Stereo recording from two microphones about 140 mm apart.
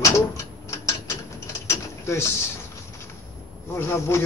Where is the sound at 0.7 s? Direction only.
20° left (ahead or behind).